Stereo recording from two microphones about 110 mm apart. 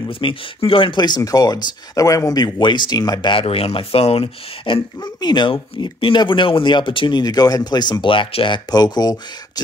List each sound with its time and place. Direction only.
0.1 s speech: 55° left (ahead or behind)
5.0 s speech: 40° left (ahead or behind)
8.7 s speech: 35° left (ahead or behind)